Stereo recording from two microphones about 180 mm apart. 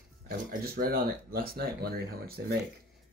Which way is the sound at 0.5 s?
55° right (ahead or behind).